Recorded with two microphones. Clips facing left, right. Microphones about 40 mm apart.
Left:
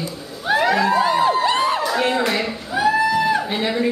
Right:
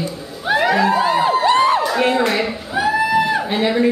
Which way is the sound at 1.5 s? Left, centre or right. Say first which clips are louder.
Right 5 dB; right.